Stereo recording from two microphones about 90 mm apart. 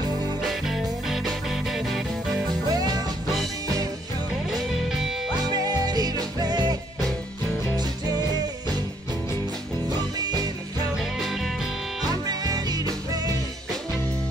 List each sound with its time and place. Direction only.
0.4 s music: centre (ahead or behind)
2.7 s music: 45° right (ahead or behind)
5.5 s music: 50° right (ahead or behind)
9.8 s music: 50° right (ahead or behind)
12.1 s music: 45° right (ahead or behind)